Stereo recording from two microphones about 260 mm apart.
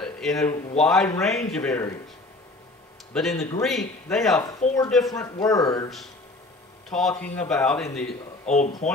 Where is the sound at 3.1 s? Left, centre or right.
Centre.